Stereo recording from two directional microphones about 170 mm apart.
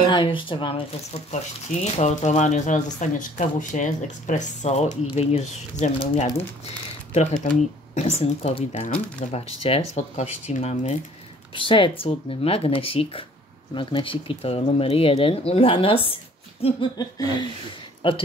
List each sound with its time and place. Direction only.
0.0 s speech: 30° left (ahead or behind)
7.2 s speech: 45° left (ahead or behind)
11.5 s speech: 30° left (ahead or behind)
16.9 s laughter: 20° left (ahead or behind)
18.0 s speech: 30° left (ahead or behind)